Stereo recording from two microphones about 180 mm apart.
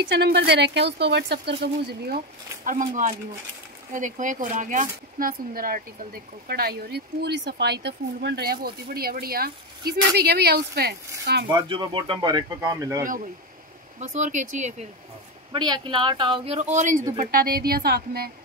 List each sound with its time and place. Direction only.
0.0 s speech: 65° right (ahead or behind)
11.5 s speech: 25° right (ahead or behind)
13.9 s speech: 40° right (ahead or behind)
15.5 s speech: 25° right (ahead or behind)
16.5 s speech: 45° right (ahead or behind)
17.2 s speech: 55° right (ahead or behind)